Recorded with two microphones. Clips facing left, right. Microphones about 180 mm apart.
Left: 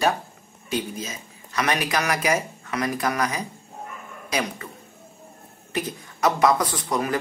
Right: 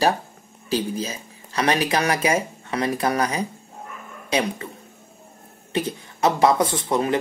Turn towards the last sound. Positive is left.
turn(degrees=-25)  # may be behind; listen again after turning